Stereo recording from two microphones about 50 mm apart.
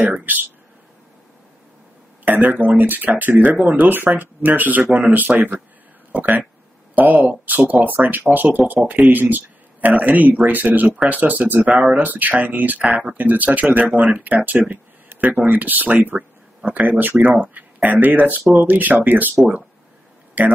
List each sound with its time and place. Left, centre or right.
0.2 s speech: right
2.2 s speech: right
8.7 s speech: right
11.6 s speech: right
12.0 s speech: right
16.2 s a sound: right
17.2 s speech: right
20.4 s speech: right